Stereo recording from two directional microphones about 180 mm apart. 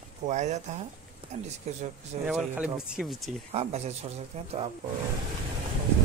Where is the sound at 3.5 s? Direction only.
35° right (ahead or behind).